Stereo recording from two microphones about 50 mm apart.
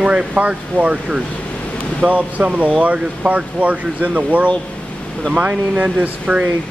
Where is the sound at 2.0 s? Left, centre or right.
Right.